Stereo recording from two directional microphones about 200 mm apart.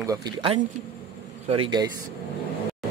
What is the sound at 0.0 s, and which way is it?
A man's voice, 20° right (ahead or behind).